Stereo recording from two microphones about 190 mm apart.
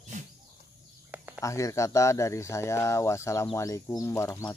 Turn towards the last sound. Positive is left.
turn(degrees=15)  # may be behind; listen again after turning